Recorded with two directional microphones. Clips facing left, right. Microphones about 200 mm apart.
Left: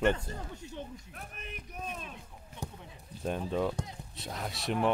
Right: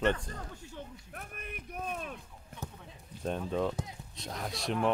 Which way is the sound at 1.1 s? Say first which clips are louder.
Right 1 dB; 55° right (ahead or behind).